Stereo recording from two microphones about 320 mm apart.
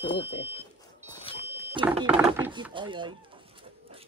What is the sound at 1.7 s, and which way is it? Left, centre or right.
Speech, centre.